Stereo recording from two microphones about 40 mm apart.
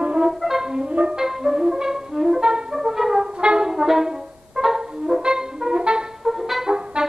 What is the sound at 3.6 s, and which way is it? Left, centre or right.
Music, centre.